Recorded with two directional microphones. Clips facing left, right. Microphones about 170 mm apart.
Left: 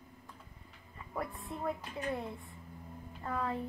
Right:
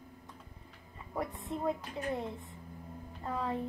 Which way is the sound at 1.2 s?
20° right (ahead or behind).